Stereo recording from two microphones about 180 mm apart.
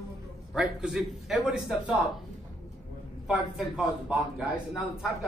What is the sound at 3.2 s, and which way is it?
Speech, 5° right (ahead or behind).